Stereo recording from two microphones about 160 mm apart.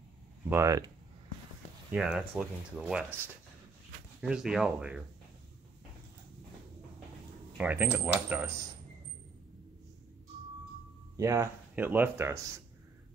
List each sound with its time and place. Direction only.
0.5 s speech: 20° right (ahead or behind)
1.9 s speech: 5° right (ahead or behind)
4.2 s speech: 5° right (ahead or behind)
7.5 s speech: 10° right (ahead or behind)
11.1 s speech: 20° right (ahead or behind)